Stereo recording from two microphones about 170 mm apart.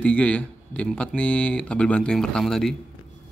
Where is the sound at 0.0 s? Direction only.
5° left (ahead or behind).